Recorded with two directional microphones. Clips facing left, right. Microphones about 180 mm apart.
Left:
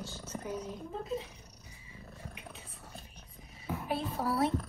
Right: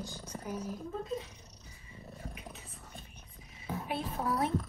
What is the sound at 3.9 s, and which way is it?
Speech, 35° left (ahead or behind).